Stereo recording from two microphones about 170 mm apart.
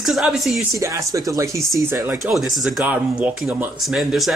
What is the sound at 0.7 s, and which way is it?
Speech, 20° right (ahead or behind).